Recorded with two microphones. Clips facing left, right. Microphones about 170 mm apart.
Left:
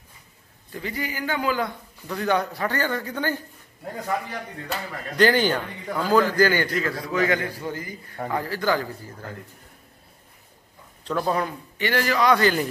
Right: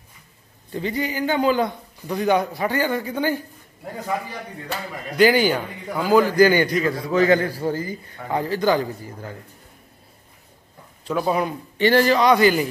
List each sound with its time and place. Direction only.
0.7 s speech: 25° right (ahead or behind)
7.1 s a man's voice: 30° right (ahead or behind)
11.1 s speech: 10° right (ahead or behind)
11.8 s speech: 30° right (ahead or behind)
12.4 s speech: 10° right (ahead or behind)